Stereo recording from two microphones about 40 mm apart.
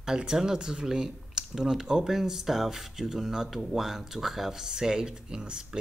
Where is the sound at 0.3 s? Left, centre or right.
Centre.